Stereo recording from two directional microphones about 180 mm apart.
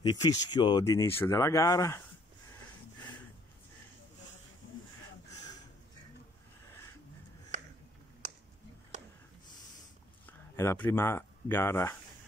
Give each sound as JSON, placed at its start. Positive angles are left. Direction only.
{"t": 0.0, "sound": "speech", "side_deg": 20}
{"t": 10.2, "sound": "speech", "side_deg": 15}